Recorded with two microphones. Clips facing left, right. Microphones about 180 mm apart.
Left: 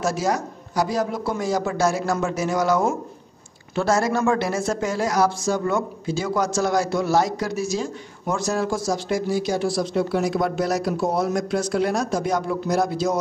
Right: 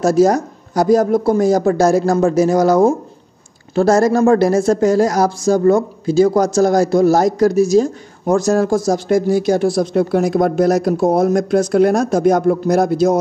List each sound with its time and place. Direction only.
0.0 s speech: 40° right (ahead or behind)